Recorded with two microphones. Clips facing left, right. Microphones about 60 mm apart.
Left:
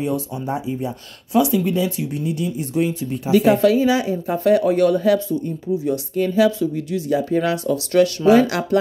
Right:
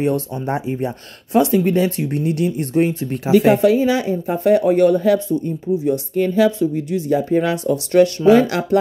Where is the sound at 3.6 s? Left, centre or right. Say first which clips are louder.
Right 1 dB; right.